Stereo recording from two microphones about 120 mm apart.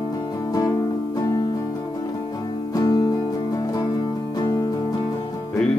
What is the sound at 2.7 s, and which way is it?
Music, 30° left (ahead or behind).